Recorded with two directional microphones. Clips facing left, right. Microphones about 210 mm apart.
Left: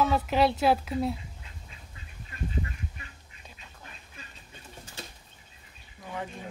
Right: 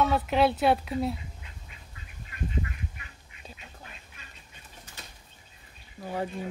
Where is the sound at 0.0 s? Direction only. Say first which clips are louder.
Right 1 dB; centre (ahead or behind).